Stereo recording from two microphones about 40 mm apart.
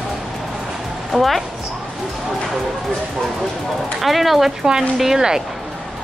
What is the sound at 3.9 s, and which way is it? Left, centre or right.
Speech, centre.